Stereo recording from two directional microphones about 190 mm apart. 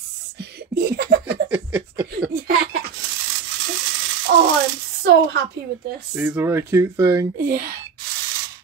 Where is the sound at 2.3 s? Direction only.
50° right (ahead or behind).